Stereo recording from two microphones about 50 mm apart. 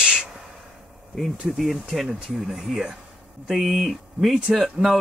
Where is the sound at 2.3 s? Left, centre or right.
Centre.